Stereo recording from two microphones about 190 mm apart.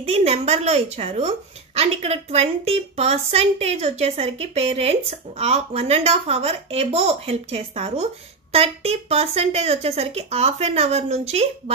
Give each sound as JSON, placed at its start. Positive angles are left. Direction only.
{"t": 0.0, "sound": "a woman's voice", "side_deg": -30}